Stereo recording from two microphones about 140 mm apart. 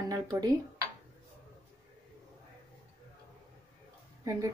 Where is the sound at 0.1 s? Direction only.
25° right (ahead or behind).